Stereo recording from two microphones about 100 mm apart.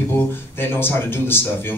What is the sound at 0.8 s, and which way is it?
Speech, 20° left (ahead or behind).